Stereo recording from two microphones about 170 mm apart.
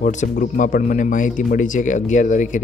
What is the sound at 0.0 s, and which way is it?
Speech, 50° left (ahead or behind).